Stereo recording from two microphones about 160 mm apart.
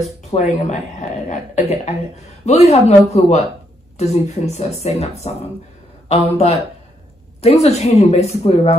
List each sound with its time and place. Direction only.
0.3 s a woman's voice: 45° left (ahead or behind)